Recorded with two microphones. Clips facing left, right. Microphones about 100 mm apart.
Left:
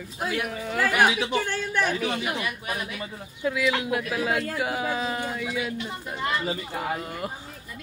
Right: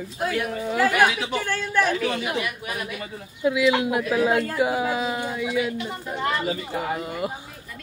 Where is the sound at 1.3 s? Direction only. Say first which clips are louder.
Right 1 dB; 25° left (ahead or behind).